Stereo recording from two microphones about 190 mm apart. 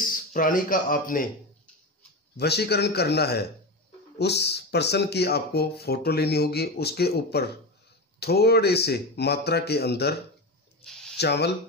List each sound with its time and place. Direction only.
0.1 s speech: 45° left (ahead or behind)
2.3 s speech: 60° left (ahead or behind)
10.8 s a sound: 5° left (ahead or behind)
11.1 s speech: 60° left (ahead or behind)